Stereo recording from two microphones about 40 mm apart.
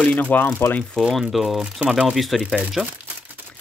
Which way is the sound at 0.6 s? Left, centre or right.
Left.